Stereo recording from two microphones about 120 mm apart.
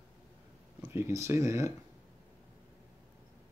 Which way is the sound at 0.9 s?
20° right (ahead or behind).